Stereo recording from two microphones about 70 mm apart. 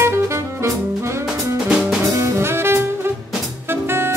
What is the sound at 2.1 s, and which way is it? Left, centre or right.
Jazz, right.